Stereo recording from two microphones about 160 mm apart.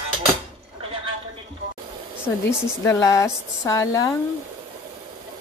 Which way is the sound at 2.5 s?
15° left (ahead or behind).